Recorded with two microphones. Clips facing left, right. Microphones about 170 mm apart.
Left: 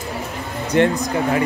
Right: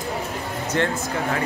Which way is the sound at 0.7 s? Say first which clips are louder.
Left 7 dB; 15° left (ahead or behind).